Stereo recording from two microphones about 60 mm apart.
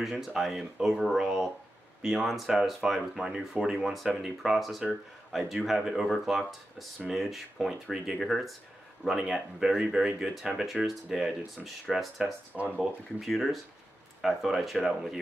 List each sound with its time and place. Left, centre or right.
0.0 s speech: centre
12.2 s speech: right
13.2 s speech: centre